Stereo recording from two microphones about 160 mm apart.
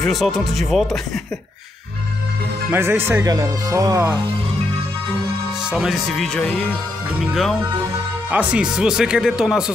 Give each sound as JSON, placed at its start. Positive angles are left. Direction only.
{"t": 0.0, "sound": "speech", "side_deg": 0}
{"t": 2.7, "sound": "speech", "side_deg": -15}
{"t": 5.7, "sound": "speech", "side_deg": 0}
{"t": 8.3, "sound": "speech", "side_deg": -10}